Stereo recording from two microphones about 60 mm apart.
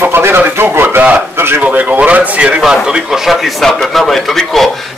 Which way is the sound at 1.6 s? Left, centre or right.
Right.